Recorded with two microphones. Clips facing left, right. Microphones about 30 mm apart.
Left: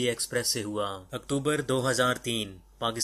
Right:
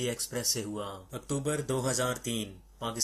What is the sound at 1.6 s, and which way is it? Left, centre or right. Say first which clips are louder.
Speech: left 5 dB; left.